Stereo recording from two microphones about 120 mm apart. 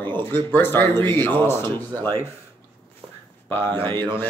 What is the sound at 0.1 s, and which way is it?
Speech, 15° left (ahead or behind).